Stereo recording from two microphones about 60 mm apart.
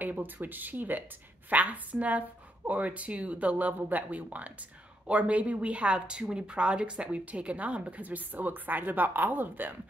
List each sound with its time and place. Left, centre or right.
0.0 s speech: right